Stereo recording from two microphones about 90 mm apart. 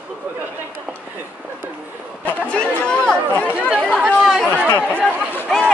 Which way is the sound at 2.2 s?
15° left (ahead or behind).